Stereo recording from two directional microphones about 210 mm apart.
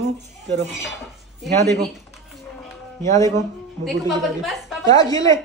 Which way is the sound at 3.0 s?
15° left (ahead or behind).